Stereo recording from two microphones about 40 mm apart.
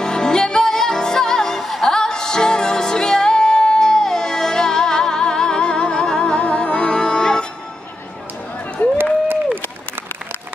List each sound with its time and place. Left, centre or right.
0.0 s music: centre
1.6 s music: centre
1.9 s music: centre
8.8 s crowd: left